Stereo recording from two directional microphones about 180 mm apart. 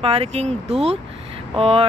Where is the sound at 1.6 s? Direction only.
35° right (ahead or behind).